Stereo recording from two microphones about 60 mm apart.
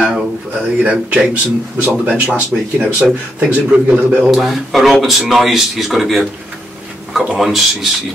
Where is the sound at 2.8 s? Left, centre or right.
Centre.